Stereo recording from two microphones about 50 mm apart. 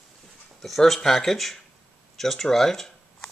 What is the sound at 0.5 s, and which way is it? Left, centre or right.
Speech, centre.